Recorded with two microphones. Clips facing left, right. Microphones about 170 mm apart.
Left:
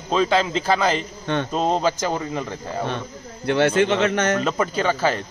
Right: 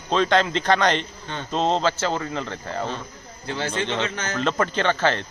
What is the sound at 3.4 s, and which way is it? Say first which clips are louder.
Speech: left 9 dB; 65° left (ahead or behind).